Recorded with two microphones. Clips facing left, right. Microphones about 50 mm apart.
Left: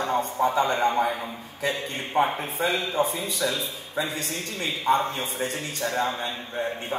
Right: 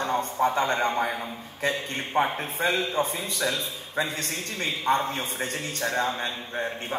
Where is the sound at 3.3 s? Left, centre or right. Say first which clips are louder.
Left 1 dB; right.